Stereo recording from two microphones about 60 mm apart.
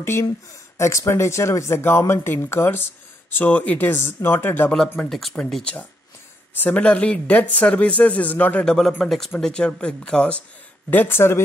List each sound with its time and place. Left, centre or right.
0.0 s speech: left
0.7 s speech: left
1.1 s speech: left
3.4 s speech: left
5.5 s speech: centre
6.5 s speech: left
6.8 s a man's voice: centre
8.6 s speech: centre
10.9 s speech: left